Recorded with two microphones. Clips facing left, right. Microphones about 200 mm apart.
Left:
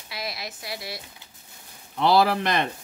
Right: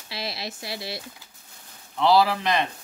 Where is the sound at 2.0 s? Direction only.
50° left (ahead or behind).